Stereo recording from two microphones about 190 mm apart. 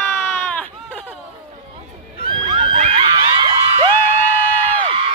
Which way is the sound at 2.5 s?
35° right (ahead or behind).